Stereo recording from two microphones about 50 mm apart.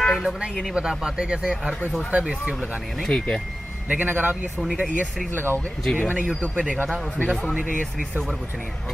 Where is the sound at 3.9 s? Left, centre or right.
Right.